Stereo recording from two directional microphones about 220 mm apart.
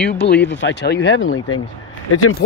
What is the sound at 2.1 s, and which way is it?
Speech, 90° left.